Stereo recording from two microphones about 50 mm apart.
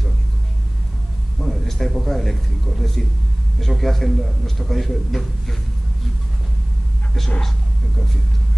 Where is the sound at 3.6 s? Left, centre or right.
Centre.